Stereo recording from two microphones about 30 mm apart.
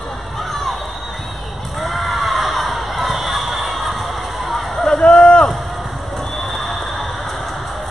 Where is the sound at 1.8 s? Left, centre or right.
Centre.